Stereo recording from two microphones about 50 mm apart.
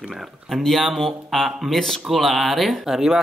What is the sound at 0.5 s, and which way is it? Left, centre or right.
Speech, centre.